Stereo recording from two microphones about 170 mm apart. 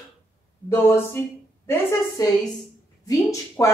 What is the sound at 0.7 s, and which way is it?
A woman's voice, 15° left (ahead or behind).